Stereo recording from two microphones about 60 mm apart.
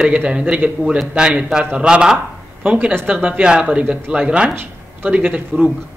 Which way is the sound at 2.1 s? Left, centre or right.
Right.